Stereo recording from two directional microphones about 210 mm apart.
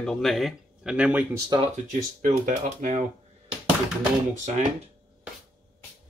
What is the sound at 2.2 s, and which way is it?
Speech, 40° right (ahead or behind).